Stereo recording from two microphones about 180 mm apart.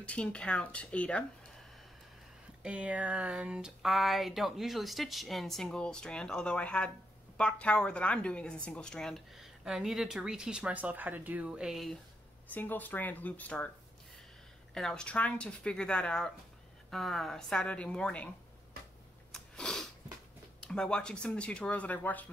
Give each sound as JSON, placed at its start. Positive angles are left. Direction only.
{"t": 0.0, "sound": "speech", "side_deg": 5}
{"t": 2.6, "sound": "a woman's voice", "side_deg": -5}
{"t": 14.7, "sound": "a woman's voice", "side_deg": 5}
{"t": 19.3, "sound": "sniff", "side_deg": 5}
{"t": 20.6, "sound": "a woman's voice", "side_deg": 5}